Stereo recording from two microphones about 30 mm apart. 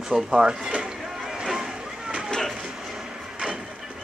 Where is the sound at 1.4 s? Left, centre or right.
Centre.